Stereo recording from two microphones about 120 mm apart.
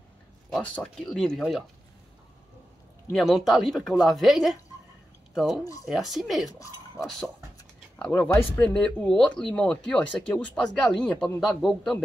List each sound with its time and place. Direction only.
0.5 s speech: 10° left (ahead or behind)
3.1 s speech: centre (ahead or behind)
8.0 s speech: 15° left (ahead or behind)